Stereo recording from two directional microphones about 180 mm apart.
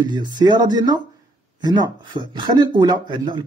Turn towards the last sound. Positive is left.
turn(degrees=-25)  # may be behind; listen again after turning